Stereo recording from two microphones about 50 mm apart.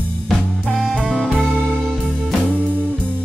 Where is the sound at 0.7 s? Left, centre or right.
Centre.